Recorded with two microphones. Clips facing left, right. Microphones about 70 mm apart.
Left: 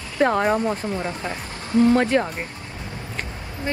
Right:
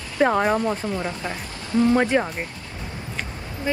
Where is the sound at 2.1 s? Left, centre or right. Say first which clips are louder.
Left 1 dB; centre.